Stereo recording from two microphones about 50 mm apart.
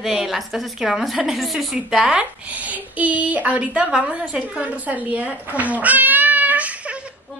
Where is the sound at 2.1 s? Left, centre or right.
Right.